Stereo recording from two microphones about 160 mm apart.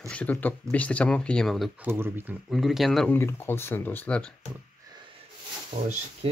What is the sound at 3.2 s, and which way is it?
Speech, 15° left (ahead or behind).